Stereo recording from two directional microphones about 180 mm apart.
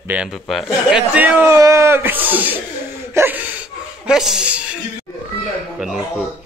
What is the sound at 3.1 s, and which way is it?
Chuckle, 10° right (ahead or behind).